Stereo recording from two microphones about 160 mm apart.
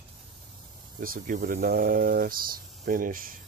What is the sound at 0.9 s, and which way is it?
Speech, 60° right (ahead or behind).